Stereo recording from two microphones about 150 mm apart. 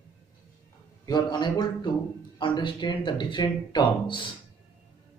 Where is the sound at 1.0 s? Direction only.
30° left (ahead or behind).